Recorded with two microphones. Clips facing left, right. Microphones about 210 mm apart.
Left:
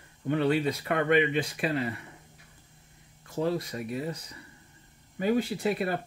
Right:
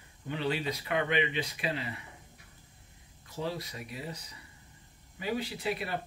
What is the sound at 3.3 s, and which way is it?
Speech, 50° left (ahead or behind).